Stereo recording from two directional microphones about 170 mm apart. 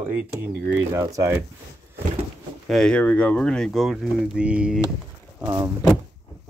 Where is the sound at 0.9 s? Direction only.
15° right (ahead or behind).